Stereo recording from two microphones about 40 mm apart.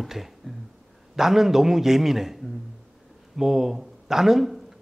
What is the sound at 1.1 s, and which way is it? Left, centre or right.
Speech, centre.